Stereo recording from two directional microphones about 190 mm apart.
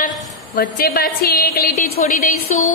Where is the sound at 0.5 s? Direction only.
50° left (ahead or behind).